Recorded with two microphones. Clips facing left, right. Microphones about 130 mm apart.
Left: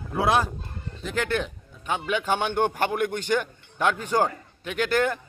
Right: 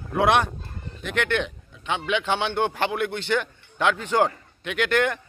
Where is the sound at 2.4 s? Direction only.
10° left (ahead or behind).